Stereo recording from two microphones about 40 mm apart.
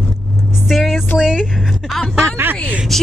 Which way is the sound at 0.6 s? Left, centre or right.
Centre.